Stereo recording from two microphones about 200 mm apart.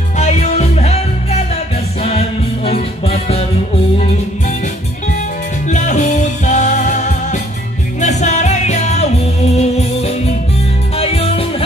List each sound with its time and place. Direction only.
0.2 s music: 35° left (ahead or behind)
5.7 s music: 35° left (ahead or behind)